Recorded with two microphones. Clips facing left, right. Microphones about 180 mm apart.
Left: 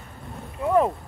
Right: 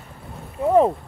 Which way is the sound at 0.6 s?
25° right (ahead or behind).